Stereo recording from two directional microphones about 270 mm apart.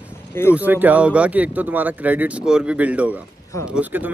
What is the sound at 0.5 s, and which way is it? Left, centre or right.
Speech, centre.